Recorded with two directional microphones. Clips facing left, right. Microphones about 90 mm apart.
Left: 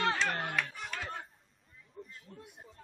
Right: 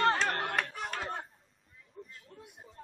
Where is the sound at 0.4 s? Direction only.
50° right (ahead or behind).